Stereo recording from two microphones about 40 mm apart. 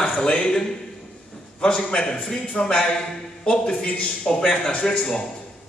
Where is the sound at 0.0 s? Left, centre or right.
Left.